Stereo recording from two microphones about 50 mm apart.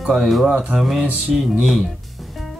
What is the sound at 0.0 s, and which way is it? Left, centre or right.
Speech, centre.